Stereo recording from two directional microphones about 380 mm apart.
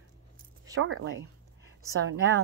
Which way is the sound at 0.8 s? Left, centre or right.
Right.